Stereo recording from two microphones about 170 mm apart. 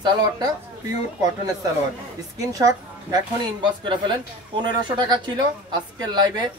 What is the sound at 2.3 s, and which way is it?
Speech, 20° right (ahead or behind).